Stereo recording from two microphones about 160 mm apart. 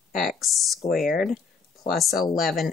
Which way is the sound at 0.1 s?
Centre (ahead or behind).